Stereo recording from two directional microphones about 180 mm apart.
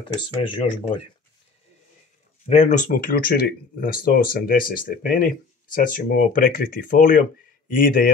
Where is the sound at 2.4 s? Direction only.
45° left (ahead or behind).